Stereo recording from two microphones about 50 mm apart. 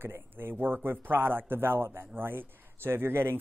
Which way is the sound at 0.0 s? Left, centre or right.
Right.